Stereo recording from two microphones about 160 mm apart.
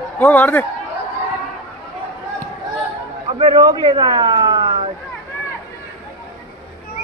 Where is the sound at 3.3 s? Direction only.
35° right (ahead or behind).